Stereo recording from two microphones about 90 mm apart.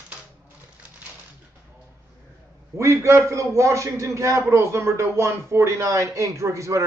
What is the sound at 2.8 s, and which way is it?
A man's voice, 30° right (ahead or behind).